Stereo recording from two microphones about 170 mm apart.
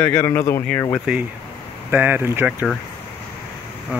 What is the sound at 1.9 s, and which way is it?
Speech, 10° right (ahead or behind).